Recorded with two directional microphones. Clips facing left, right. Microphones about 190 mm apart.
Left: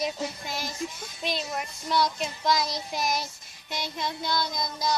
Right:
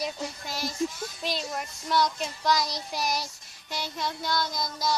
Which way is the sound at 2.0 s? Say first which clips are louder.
Even; centre (ahead or behind).